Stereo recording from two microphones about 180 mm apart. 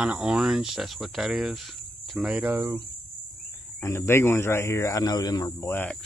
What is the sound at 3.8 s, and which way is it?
Speech, 15° left (ahead or behind).